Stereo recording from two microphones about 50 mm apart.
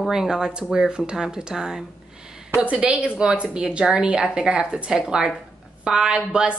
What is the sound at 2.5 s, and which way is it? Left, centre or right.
A woman's voice, right.